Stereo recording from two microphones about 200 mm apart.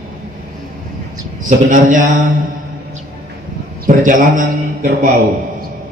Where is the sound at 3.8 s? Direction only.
40° right (ahead or behind).